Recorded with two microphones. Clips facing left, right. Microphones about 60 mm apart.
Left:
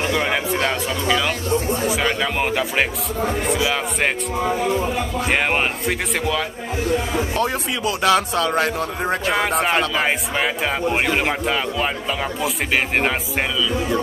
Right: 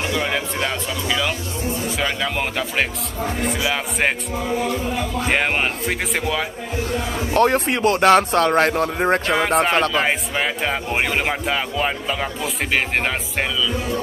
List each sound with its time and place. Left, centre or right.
0.1 s speech: centre
4.6 s speech: left
5.3 s speech: centre
7.3 s speech: right
9.3 s speech: centre